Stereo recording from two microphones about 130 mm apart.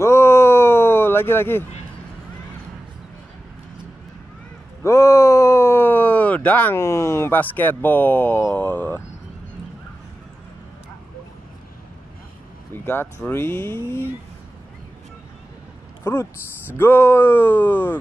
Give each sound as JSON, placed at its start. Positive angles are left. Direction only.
{"t": 0.0, "sound": "a sound", "side_deg": 20}
{"t": 4.8, "sound": "speech", "side_deg": 20}
{"t": 12.7, "sound": "speech", "side_deg": 15}
{"t": 16.0, "sound": "speech", "side_deg": 20}